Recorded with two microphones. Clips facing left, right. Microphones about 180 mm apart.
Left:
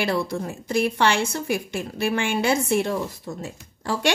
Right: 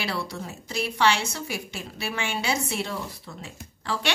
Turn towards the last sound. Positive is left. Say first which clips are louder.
# left 5 dB
turn(degrees=45)  # may be behind; listen again after turning